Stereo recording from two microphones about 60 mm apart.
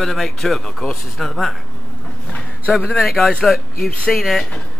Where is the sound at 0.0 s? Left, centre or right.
Centre.